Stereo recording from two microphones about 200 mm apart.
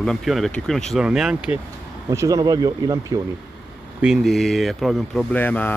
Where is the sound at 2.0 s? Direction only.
15° right (ahead or behind).